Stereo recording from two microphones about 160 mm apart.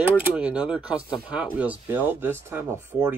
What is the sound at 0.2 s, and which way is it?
Speech, 10° right (ahead or behind).